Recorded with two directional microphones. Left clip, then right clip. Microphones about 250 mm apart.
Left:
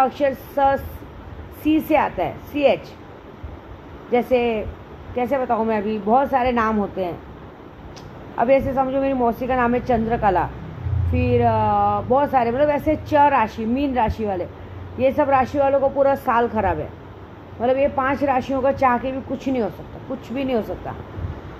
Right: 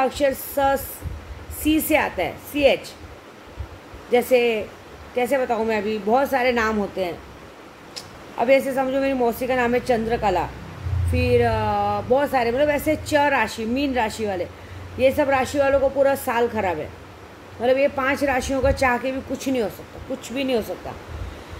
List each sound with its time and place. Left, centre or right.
0.0 s a woman's voice: centre
4.1 s a woman's voice: centre
8.4 s a woman's voice: centre